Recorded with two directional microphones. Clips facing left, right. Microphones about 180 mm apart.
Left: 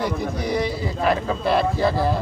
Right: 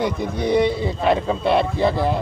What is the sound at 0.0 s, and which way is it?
A man's voice, 25° right (ahead or behind).